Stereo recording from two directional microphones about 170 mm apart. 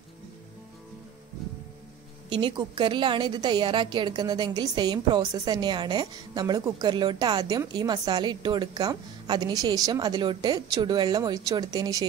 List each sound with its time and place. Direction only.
2.2 s a woman's voice: 30° right (ahead or behind)